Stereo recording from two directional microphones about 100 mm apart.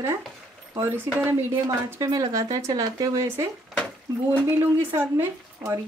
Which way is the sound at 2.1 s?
35° right (ahead or behind).